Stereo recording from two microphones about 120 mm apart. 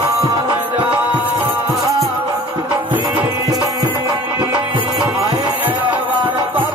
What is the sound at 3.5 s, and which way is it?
Music, 40° right (ahead or behind).